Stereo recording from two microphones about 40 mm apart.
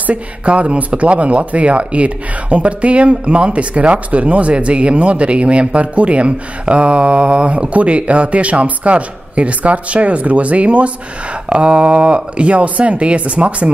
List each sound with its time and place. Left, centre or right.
0.0 s speech: right